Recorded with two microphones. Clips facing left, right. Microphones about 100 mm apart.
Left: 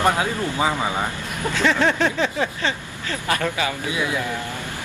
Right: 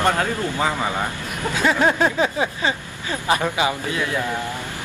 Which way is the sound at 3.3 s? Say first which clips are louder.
Right 3 dB; 20° right (ahead or behind).